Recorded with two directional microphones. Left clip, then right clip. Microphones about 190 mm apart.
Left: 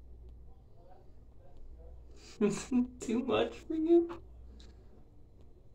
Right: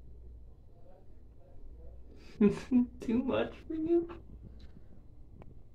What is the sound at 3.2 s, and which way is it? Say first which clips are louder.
Speech: left 5 dB; 5° right (ahead or behind).